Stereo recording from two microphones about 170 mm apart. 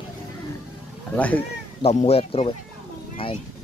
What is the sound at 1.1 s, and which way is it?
Speech, 10° left (ahead or behind).